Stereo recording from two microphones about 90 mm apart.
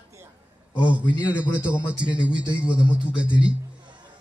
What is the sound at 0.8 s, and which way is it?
A man's voice, 15° right (ahead or behind).